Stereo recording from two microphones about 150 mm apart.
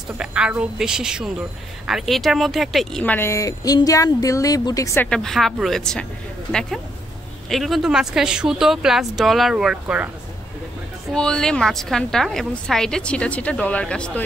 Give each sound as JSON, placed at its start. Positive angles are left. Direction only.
{"t": 0.2, "sound": "a woman's voice", "side_deg": -5}
{"t": 5.0, "sound": "a woman's voice", "side_deg": 5}
{"t": 7.4, "sound": "a woman's voice", "side_deg": 0}
{"t": 11.1, "sound": "a woman's voice", "side_deg": 5}